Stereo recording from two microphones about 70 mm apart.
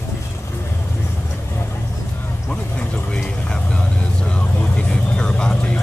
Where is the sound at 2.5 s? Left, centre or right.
Centre.